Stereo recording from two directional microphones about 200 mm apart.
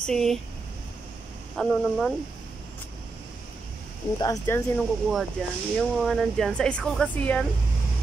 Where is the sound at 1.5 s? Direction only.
5° left (ahead or behind).